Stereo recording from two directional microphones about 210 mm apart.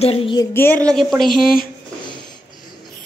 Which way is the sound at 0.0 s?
25° left (ahead or behind).